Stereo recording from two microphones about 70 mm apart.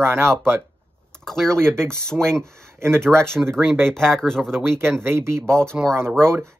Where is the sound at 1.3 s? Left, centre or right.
Centre.